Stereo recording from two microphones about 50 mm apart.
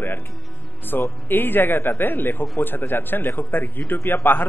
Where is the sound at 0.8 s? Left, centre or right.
Left.